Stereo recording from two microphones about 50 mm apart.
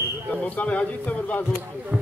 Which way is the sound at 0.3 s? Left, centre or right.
Left.